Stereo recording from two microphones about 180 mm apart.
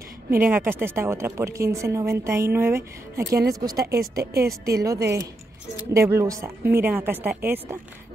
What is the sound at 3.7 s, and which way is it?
Speech, 60° right (ahead or behind).